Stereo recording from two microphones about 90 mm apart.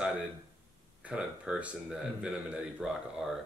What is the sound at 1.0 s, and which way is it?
Speech, 15° right (ahead or behind).